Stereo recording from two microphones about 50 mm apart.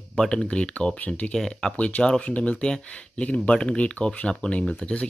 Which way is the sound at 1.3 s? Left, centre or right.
Centre.